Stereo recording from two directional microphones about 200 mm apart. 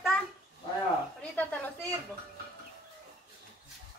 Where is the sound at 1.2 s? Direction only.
5° left (ahead or behind).